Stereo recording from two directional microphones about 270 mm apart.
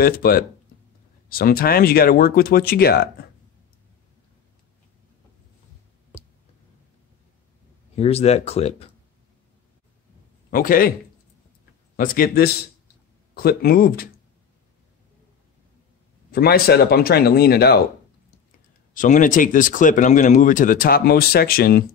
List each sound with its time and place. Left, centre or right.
0.0 s speech: left
7.9 s speech: left
10.5 s speech: left
12.0 s speech: left
16.3 s speech: left
18.9 s speech: left